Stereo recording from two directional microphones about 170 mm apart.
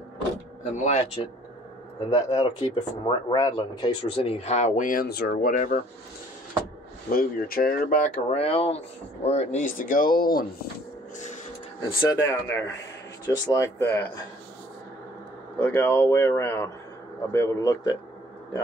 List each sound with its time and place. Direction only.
0.7 s speech: 45° left (ahead or behind)
2.0 s speech: 20° left (ahead or behind); by 5.5 s 70° left (ahead or behind)
5.7 s speech: 55° left (ahead or behind)
7.1 s speech: 60° left (ahead or behind)
8.3 s speech: 35° left (ahead or behind); by 10.7 s 60° left (ahead or behind)
12.0 s speech: 20° left (ahead or behind)
15.6 s speech: 15° left (ahead or behind)